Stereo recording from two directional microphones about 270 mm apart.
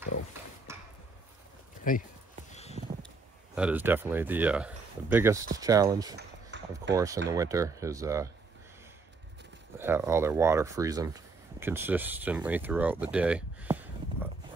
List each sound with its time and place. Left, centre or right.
1.9 s speech: left
2.5 s a sound: left
3.5 s speech: centre
6.5 s a sound: right
6.9 s speech: centre
9.8 s speech: centre